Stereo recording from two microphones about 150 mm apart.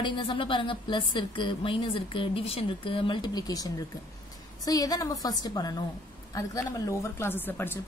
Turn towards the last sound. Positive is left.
turn(degrees=15)  # may be behind; listen again after turning